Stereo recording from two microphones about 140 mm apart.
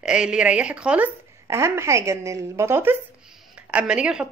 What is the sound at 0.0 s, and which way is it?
Speech, 5° right (ahead or behind).